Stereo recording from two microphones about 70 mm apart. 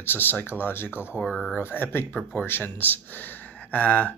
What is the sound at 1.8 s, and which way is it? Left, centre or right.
Speech, left.